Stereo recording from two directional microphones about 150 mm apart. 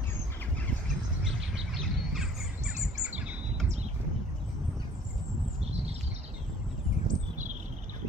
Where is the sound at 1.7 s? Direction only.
Centre (ahead or behind).